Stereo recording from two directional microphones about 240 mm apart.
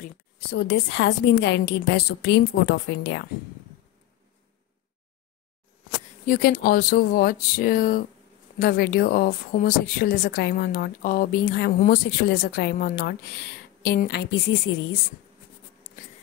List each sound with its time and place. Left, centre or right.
0.5 s a woman's voice: left
6.2 s a woman's voice: left
15.8 s writing: left